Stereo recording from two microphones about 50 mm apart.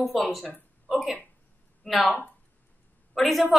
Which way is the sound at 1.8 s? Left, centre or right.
Left.